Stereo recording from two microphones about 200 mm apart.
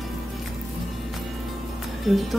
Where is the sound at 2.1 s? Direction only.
Centre (ahead or behind).